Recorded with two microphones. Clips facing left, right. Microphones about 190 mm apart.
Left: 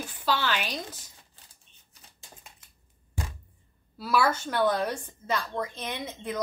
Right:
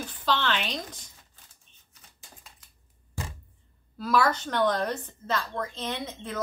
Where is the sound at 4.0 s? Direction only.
10° left (ahead or behind).